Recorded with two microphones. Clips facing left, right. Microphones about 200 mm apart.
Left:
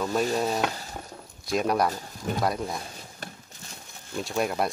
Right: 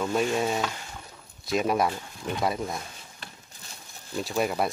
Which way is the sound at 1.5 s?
Centre (ahead or behind).